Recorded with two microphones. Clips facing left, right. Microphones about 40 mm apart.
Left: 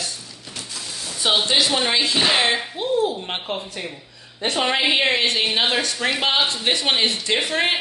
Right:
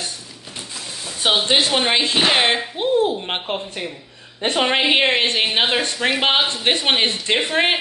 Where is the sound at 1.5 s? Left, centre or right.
Right.